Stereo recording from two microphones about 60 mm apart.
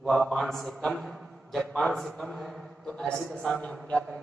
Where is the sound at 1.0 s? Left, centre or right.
Centre.